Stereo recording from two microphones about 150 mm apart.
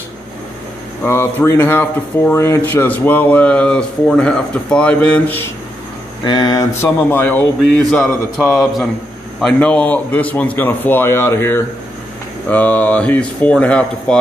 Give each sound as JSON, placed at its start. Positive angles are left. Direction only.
{"t": 1.0, "sound": "speech", "side_deg": 15}
{"t": 6.2, "sound": "speech", "side_deg": 25}
{"t": 6.8, "sound": "a man's voice", "side_deg": 15}